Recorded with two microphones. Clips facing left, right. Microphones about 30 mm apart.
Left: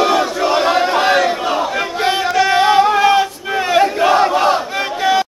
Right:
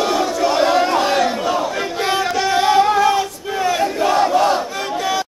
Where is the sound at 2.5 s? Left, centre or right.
Centre.